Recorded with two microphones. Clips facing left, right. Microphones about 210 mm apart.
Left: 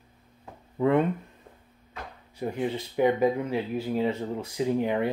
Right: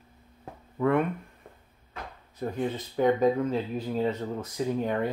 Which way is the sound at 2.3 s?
10° left (ahead or behind).